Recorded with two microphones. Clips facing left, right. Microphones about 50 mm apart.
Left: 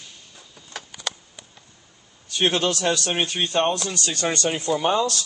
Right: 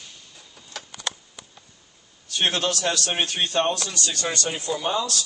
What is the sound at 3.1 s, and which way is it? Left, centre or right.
Speech, centre.